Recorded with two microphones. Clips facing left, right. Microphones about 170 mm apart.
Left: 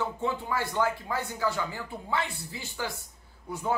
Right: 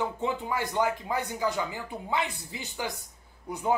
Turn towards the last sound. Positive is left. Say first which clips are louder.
# right 1 dB
turn(degrees=-15)  # may be behind; listen again after turning